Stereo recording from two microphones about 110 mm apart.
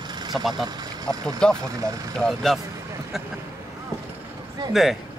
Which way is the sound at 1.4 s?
5° left (ahead or behind).